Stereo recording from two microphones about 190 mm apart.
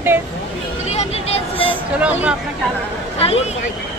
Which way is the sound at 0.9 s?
35° left (ahead or behind).